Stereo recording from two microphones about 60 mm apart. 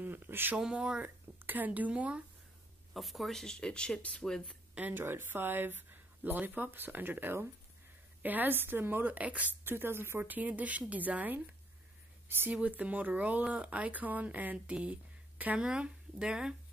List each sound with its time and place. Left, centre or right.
0.0 s speech: right
0.6 s speech: centre
1.0 s speech: right
2.9 s speech: centre
4.7 s speech: right
9.7 s speech: right
12.6 s speech: right